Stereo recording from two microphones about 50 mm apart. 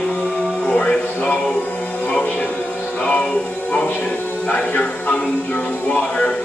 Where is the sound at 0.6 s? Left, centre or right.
Left.